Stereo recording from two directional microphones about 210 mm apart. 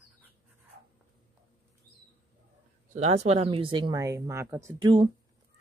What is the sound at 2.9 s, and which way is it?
Speech, 30° right (ahead or behind).